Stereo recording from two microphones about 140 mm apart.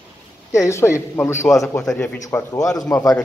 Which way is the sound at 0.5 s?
20° left (ahead or behind).